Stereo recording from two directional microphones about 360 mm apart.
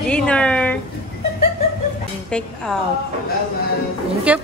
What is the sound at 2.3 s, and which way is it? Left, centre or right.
Speech, centre.